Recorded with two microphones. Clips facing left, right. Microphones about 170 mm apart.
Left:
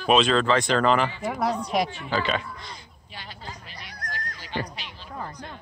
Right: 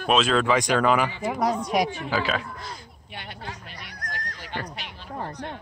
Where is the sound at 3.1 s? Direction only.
60° right (ahead or behind).